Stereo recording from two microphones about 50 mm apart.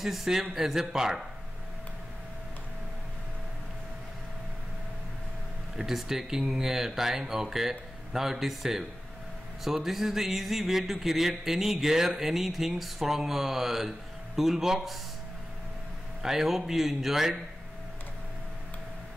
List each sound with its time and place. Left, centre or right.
0.0 s speech: centre
5.8 s speech: centre
9.7 s music: centre
16.2 s speech: centre